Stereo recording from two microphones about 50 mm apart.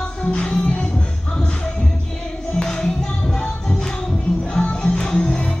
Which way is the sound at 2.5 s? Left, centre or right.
Centre.